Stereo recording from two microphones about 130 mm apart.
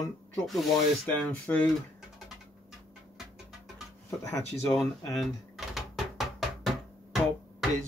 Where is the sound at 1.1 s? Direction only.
15° left (ahead or behind).